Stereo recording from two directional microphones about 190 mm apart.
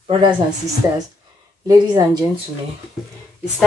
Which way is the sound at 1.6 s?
20° right (ahead or behind).